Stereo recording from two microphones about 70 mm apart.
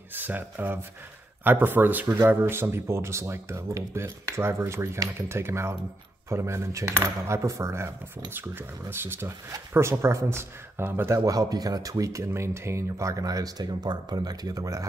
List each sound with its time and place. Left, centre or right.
0.1 s speech: right
8.9 s speech: right
11.2 s speech: right